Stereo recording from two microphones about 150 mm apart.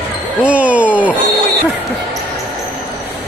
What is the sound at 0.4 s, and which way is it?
Music, 10° right (ahead or behind).